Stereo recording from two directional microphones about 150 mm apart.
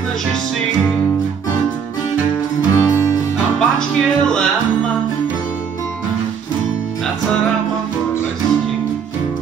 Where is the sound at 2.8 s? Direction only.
20° left (ahead or behind).